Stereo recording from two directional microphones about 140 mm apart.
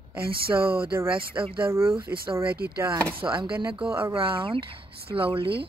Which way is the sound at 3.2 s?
35° right (ahead or behind).